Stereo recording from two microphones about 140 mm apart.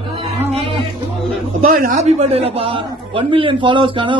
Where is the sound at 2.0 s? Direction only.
50° right (ahead or behind).